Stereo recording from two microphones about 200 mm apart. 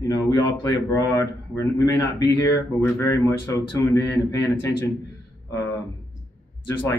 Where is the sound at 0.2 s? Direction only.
15° left (ahead or behind).